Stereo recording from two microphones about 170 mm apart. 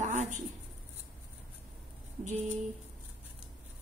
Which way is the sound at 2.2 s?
45° right (ahead or behind).